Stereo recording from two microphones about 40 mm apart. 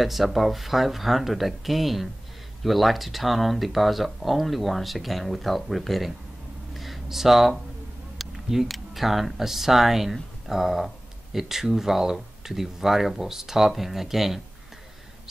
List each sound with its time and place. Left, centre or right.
0.0 s speech: centre
6.7 s a sound: centre
8.5 s speech: centre